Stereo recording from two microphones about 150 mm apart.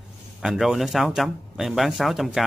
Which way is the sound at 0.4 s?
5° right (ahead or behind).